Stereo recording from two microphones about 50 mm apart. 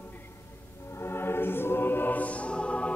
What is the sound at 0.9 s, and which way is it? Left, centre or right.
Music, left.